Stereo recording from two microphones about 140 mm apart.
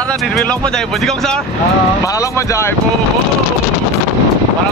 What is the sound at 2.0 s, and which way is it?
Speech, 20° left (ahead or behind).